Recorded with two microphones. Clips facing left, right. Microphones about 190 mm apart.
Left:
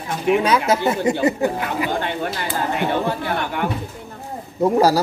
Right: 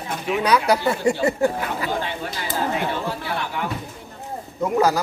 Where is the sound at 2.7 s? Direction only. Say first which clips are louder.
Left 4 dB; 55° left (ahead or behind).